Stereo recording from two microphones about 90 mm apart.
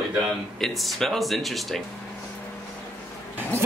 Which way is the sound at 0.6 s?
Centre (ahead or behind).